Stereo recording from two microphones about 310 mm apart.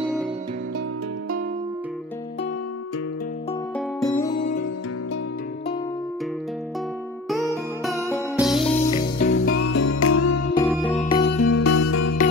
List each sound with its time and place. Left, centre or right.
4.0 s music: centre
7.4 s music: centre
9.3 s music: left
10.5 s music: centre
11.0 s music: centre
11.2 s music: left